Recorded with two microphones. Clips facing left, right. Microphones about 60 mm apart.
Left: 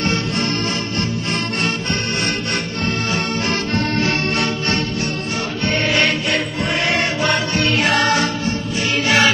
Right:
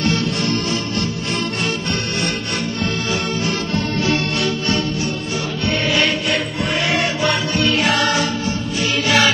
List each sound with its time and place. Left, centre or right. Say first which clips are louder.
0.0 s music: right 1 dB; left
3.1 s music: even; left
5.9 s music: even; centre
7.5 s music: even; left
8.9 s music: left 1 dB; left